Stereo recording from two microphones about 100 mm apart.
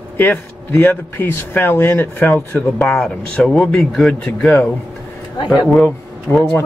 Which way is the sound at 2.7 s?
5° left (ahead or behind).